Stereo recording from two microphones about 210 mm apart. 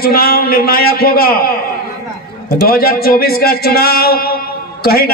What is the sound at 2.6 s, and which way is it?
A man's voice, 45° left (ahead or behind).